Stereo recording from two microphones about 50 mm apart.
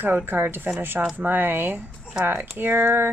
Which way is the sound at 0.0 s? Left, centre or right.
Right.